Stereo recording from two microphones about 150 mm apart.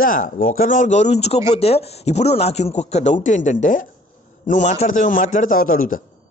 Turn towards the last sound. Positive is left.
turn(degrees=70)  # may be behind; listen again after turning